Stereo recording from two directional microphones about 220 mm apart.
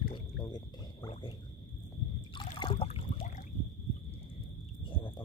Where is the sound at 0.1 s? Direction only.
20° left (ahead or behind).